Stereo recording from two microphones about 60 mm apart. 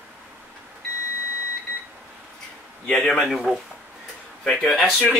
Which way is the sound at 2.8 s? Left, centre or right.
Centre.